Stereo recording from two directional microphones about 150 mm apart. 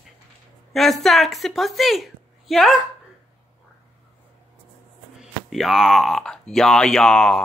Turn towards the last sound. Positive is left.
turn(degrees=5)  # may be behind; listen again after turning